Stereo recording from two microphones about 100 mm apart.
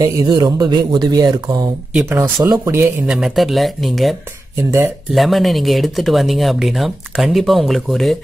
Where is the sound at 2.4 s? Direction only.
35° right (ahead or behind).